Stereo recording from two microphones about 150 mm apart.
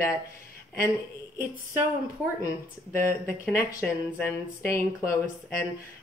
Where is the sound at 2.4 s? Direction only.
20° left (ahead or behind).